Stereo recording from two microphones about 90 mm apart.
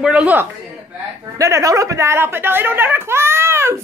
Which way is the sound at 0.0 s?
15° right (ahead or behind).